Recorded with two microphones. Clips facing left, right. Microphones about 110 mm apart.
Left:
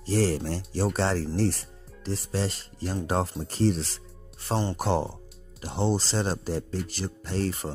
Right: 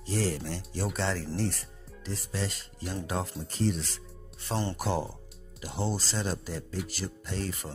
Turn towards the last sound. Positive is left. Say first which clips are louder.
# left 6 dB
turn(degrees=35)  # may be behind; listen again after turning